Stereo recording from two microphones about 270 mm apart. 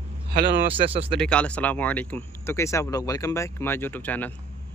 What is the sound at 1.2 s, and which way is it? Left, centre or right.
Speech, centre.